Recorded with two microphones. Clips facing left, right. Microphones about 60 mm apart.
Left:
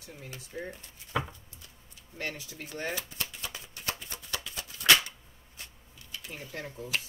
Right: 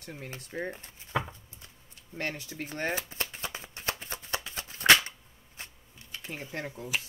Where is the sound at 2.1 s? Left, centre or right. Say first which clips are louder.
Right 3 dB; right.